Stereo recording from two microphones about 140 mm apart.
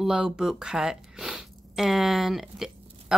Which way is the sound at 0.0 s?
5° right (ahead or behind).